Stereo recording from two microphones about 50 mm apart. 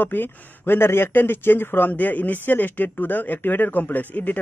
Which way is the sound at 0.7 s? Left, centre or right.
Left.